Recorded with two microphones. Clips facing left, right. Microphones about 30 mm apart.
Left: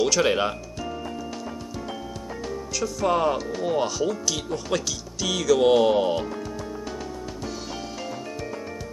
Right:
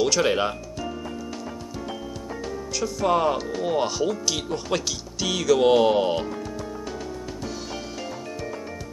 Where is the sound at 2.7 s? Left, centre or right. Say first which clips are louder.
Right 1 dB; centre.